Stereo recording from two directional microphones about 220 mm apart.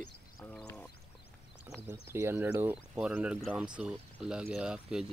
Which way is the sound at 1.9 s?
10° right (ahead or behind).